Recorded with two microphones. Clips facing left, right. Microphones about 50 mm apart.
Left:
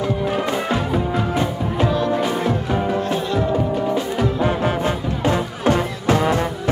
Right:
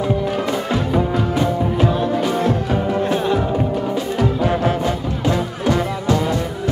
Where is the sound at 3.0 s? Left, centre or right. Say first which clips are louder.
Right 3 dB; right.